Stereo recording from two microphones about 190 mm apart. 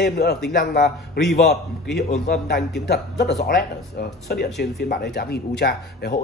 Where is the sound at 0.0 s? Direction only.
60° left (ahead or behind).